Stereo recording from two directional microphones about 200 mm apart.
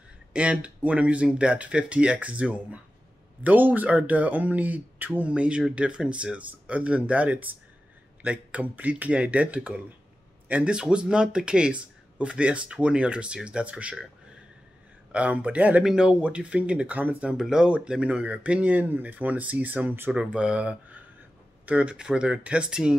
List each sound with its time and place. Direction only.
0.3 s speech: 5° right (ahead or behind)
15.1 s speech: 5° right (ahead or behind)